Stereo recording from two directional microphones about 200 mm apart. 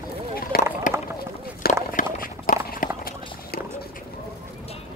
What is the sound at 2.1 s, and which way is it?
Run, 45° left (ahead or behind).